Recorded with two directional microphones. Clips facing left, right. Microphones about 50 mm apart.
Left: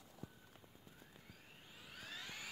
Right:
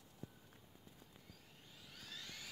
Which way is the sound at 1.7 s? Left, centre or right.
Left.